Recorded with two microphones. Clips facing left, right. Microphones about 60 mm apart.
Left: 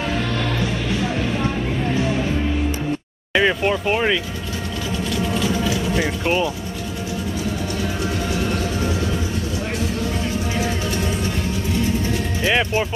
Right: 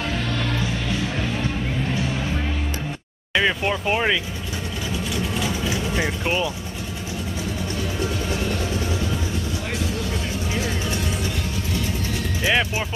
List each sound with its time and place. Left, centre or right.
3.3 s speech: centre
5.9 s speech: centre
12.4 s speech: centre